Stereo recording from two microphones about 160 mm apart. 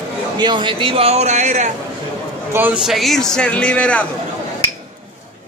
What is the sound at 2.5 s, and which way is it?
Speech, 10° right (ahead or behind).